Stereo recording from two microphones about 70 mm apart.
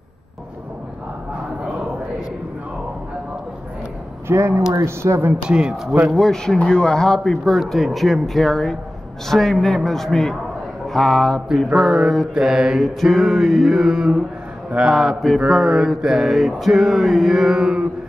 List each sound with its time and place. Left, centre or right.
4.3 s a woman's voice: right
5.3 s speech: centre
6.0 s mantra: centre
14.7 s a man's voice: centre
15.0 s mantra: centre